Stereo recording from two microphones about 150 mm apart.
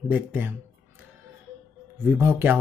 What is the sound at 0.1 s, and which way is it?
Speech, 10° right (ahead or behind).